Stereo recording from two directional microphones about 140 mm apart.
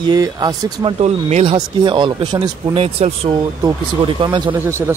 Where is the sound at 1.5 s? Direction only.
35° right (ahead or behind).